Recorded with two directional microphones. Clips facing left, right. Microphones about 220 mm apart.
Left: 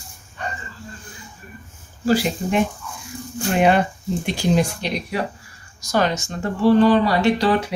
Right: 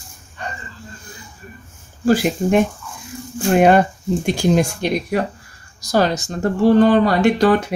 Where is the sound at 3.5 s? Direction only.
45° right (ahead or behind).